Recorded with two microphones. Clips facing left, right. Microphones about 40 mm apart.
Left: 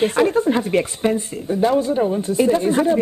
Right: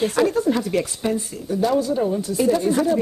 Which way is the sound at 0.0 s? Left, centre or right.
Left.